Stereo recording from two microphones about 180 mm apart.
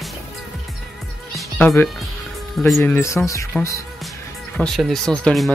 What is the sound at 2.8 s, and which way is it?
Speech, 15° left (ahead or behind).